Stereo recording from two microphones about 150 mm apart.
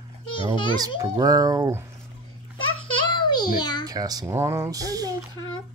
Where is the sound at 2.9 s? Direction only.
30° left (ahead or behind).